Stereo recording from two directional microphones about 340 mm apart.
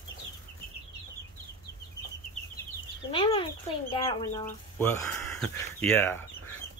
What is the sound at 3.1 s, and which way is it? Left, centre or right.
Speech, centre.